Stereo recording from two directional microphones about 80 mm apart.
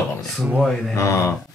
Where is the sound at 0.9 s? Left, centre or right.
Left.